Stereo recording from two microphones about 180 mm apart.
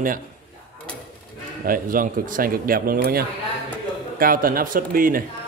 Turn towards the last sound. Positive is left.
turn(degrees=-50)  # may be behind; listen again after turning